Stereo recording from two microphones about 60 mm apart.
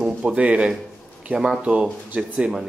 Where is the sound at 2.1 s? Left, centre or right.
Right.